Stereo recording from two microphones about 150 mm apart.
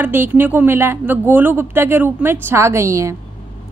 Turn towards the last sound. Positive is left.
turn(degrees=-20)  # may be behind; listen again after turning